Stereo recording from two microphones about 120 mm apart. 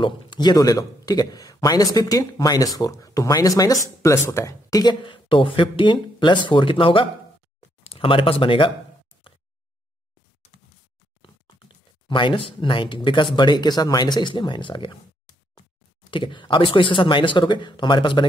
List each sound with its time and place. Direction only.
0.0 s speech: 40° left (ahead or behind)
11.2 s speech: 45° left (ahead or behind)
16.1 s speech: 45° left (ahead or behind)